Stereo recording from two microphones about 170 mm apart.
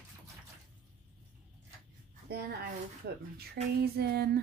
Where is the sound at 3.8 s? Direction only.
70° right (ahead or behind).